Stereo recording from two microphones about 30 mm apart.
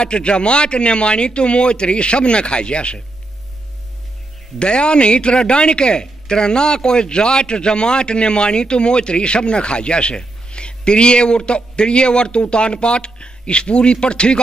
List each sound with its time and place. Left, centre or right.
0.0 s a man's voice: left
4.6 s a man's voice: left